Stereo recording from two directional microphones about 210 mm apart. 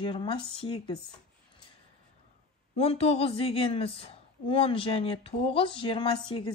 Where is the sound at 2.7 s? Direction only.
30° left (ahead or behind).